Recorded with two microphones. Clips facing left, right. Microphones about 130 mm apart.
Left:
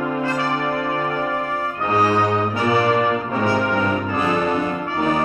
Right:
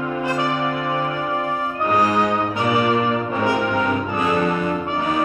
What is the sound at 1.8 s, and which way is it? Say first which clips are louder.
Brass instrument: even; 35° left (ahead or behind).